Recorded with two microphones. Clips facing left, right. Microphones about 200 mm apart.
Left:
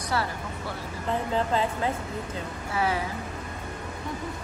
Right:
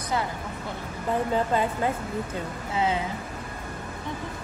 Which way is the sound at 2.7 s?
20° right (ahead or behind).